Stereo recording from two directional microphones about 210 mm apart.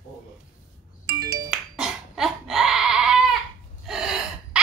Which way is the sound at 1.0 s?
15° right (ahead or behind).